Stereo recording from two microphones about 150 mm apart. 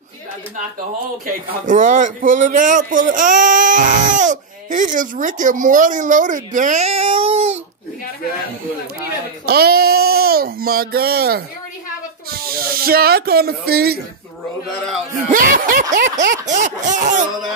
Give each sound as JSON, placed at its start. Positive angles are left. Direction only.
{"t": 1.2, "sound": "a man's voice", "side_deg": -60}
{"t": 9.5, "sound": "a sound", "side_deg": -90}
{"t": 12.4, "sound": "speech", "side_deg": -80}
{"t": 15.2, "sound": "a man's voice", "side_deg": -65}